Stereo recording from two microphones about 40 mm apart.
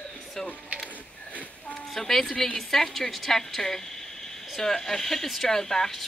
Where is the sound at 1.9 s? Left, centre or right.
Centre.